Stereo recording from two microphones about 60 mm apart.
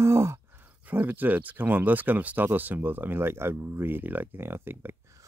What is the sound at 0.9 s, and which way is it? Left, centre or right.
Speech, right.